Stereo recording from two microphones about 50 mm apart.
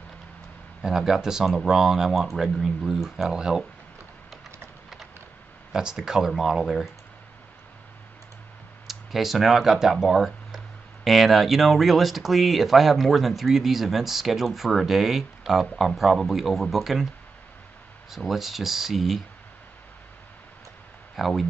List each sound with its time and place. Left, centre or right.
0.8 s speech: centre
5.7 s speech: centre
8.8 s speech: centre
18.1 s speech: centre
21.2 s speech: centre